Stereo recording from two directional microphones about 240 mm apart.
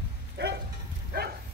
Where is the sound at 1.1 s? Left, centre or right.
Right.